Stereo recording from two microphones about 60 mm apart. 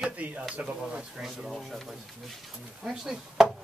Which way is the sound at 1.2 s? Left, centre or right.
Centre.